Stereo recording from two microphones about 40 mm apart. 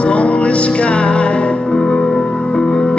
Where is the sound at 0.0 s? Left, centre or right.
Left.